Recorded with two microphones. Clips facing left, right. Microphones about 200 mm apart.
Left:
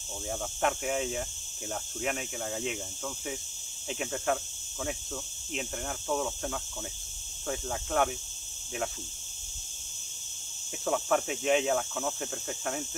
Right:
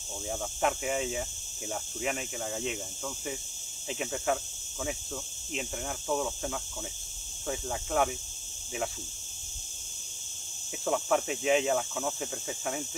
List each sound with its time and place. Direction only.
0.3 s speech: centre (ahead or behind)
3.9 s speech: centre (ahead or behind)
10.9 s speech: centre (ahead or behind)